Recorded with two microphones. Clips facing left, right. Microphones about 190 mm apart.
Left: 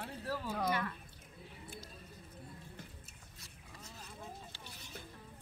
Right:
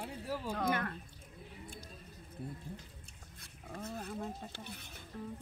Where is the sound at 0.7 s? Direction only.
50° right (ahead or behind).